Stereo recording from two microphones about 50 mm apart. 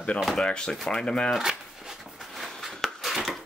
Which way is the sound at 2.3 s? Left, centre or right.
Centre.